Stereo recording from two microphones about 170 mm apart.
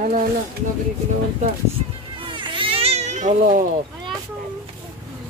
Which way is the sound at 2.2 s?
30° right (ahead or behind).